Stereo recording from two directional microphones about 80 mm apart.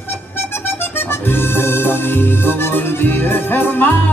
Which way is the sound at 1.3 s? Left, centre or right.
Left.